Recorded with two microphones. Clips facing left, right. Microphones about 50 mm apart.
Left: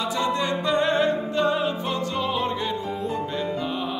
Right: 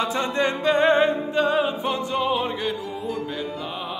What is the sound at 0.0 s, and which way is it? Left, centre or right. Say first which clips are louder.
Music: right 2 dB; right.